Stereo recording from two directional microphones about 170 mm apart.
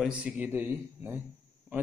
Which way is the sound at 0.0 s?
5° right (ahead or behind).